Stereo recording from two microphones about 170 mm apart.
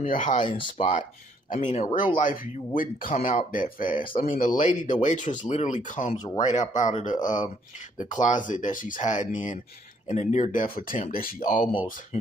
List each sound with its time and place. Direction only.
0.1 s speech: 50° left (ahead or behind)
0.8 s speech: 40° left (ahead or behind)
6.1 s speech: 20° left (ahead or behind)
6.4 s speech: 45° left (ahead or behind)
11.6 s speech: 30° left (ahead or behind)